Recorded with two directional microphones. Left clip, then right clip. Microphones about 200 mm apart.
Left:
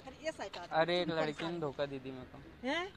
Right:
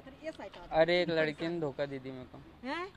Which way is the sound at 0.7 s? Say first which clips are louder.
Right 5 dB; 50° right (ahead or behind).